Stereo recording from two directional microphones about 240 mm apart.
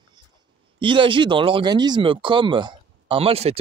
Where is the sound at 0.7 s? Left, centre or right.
Right.